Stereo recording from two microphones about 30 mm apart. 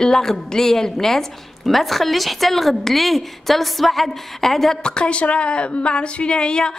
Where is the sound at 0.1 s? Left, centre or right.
Centre.